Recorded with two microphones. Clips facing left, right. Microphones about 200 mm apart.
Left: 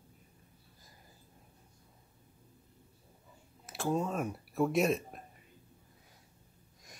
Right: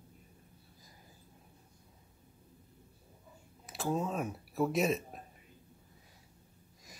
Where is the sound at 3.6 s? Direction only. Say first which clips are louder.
Left 1 dB; centre (ahead or behind).